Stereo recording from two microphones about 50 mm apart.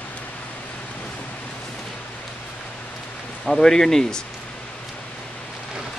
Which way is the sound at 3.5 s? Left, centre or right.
Centre.